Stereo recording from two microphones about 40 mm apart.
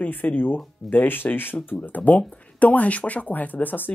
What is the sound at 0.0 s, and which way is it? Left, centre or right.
Speech, left.